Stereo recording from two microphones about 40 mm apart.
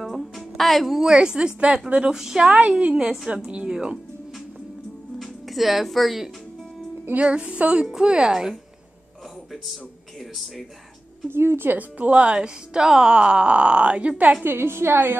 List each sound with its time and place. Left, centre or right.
0.0 s music: centre
1.0 s speech: centre
2.9 s a woman's voice: centre
5.2 s speech: centre
7.2 s a woman's voice: right
7.8 s speech: centre
9.5 s speech: centre
11.2 s a woman's voice: right
12.1 s speech: right
14.4 s a woman's voice: right